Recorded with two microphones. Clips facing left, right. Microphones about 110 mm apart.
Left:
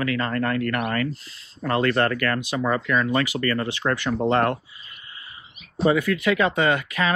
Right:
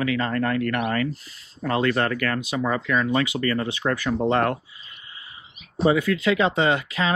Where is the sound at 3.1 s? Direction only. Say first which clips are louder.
Even; 50° left (ahead or behind).